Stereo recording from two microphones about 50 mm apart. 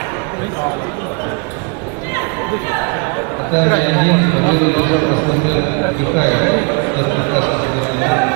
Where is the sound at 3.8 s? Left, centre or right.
Left.